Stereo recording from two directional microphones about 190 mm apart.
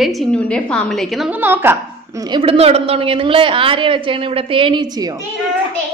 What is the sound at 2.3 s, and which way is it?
A woman's voice, 30° right (ahead or behind).